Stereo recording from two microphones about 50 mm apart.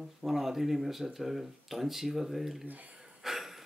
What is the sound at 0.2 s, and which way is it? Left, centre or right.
Speech, centre.